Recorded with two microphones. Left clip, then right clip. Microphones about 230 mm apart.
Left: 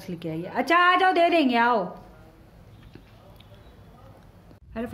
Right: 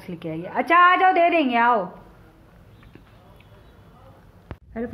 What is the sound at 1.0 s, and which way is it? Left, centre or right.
Speech, left.